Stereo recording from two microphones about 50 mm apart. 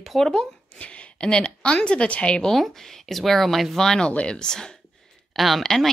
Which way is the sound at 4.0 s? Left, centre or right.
Left.